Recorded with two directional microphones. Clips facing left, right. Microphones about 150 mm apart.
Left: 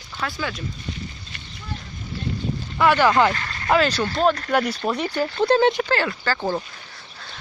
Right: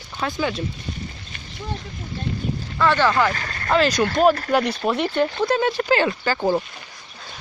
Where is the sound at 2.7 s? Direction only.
15° left (ahead or behind).